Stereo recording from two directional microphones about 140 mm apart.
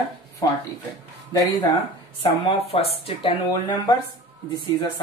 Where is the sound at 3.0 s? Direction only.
40° left (ahead or behind).